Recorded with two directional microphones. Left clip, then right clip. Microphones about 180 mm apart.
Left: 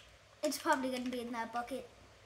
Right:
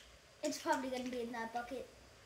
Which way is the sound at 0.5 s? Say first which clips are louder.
Left 3 dB; 60° left (ahead or behind).